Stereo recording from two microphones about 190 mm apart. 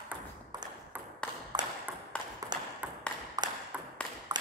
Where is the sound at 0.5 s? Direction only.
20° right (ahead or behind).